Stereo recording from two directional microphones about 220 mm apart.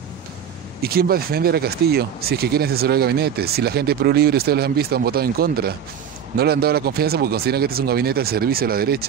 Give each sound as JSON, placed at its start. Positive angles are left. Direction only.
{"t": 0.8, "sound": "speech", "side_deg": -45}